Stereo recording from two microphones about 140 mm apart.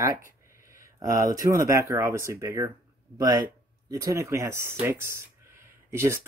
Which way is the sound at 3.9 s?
25° right (ahead or behind).